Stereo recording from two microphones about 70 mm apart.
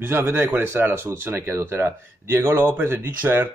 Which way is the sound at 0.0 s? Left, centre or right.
Right.